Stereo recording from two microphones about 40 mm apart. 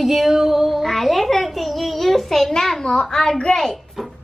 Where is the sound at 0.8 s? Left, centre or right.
Centre.